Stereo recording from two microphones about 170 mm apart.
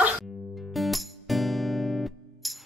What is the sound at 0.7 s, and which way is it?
Music, centre (ahead or behind).